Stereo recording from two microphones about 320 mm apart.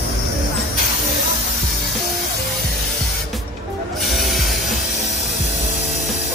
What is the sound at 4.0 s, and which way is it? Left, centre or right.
Spray, centre.